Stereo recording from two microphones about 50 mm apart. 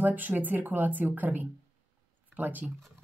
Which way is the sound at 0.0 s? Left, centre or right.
Right.